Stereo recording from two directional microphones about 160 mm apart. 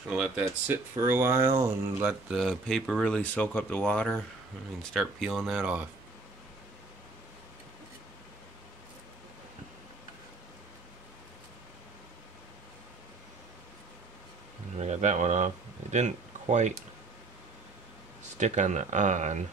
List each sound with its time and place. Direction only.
0.0 s speech: 5° right (ahead or behind)
1.5 s speech: 25° right (ahead or behind)
2.0 s speech: centre (ahead or behind)
14.8 s speech: 45° right (ahead or behind)
18.4 s speech: 50° right (ahead or behind)